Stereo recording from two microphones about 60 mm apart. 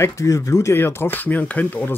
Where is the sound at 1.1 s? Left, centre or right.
Left.